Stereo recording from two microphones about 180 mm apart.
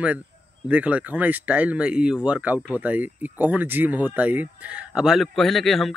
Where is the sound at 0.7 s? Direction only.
10° right (ahead or behind).